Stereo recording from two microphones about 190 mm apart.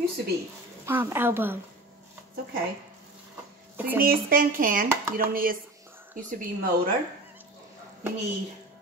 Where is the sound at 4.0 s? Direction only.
50° right (ahead or behind).